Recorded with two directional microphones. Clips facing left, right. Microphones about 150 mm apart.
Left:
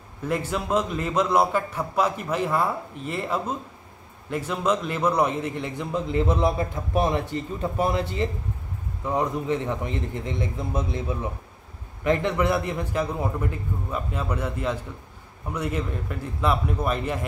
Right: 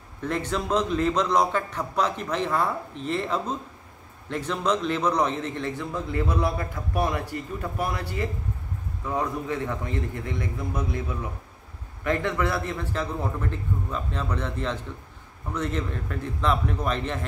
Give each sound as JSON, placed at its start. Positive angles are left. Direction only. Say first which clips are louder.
{"t": 0.2, "sound": "a man's voice", "louder": "left 1 dB", "side_deg": 5}